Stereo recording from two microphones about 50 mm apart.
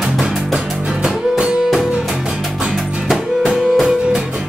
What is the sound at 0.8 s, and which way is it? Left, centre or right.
Music, right.